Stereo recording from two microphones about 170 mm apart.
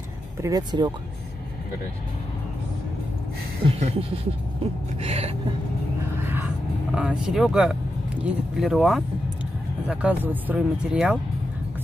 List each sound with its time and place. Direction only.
0.4 s speech: 20° right (ahead or behind)
3.6 s a sound: 35° right (ahead or behind)
6.2 s vehicle: 10° right (ahead or behind)
7.0 s speech: 5° right (ahead or behind)